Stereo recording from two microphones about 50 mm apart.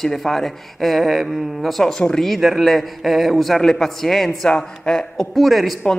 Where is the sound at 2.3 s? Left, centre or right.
Centre.